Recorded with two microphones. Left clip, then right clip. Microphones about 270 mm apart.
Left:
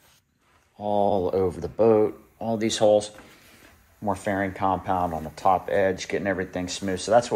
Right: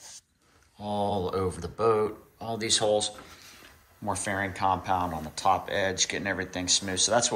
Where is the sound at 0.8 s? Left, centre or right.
Centre.